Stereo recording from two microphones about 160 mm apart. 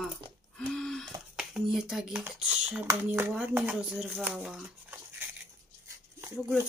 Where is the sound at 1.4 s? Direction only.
Centre (ahead or behind).